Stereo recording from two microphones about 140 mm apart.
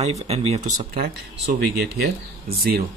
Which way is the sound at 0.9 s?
90° right.